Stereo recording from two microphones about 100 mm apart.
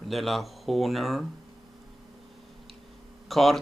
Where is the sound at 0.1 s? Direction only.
Centre (ahead or behind).